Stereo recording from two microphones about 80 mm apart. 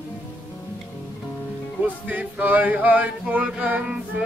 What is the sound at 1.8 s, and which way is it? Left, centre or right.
Music, centre.